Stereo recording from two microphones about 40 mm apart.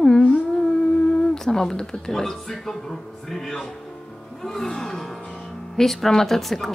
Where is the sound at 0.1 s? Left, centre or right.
Left.